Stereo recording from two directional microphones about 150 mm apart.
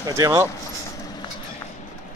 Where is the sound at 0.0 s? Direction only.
20° right (ahead or behind).